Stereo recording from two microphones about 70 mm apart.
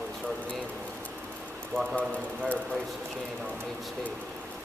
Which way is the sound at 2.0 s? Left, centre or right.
Centre.